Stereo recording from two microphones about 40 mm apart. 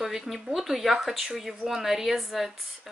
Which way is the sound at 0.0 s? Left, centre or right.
Centre.